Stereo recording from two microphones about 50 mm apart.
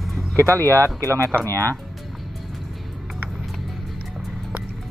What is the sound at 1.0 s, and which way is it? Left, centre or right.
Speech, right.